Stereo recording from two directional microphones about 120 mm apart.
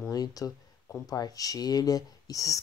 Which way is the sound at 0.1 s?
30° left (ahead or behind).